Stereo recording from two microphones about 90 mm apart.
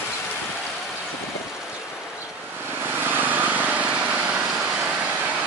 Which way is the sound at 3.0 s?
20° right (ahead or behind).